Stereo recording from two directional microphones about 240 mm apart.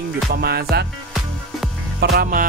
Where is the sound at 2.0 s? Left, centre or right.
Right.